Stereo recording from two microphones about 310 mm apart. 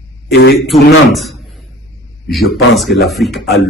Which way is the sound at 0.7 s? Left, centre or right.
Centre.